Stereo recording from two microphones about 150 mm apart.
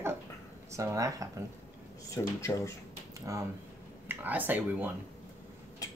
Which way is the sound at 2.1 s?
20° left (ahead or behind).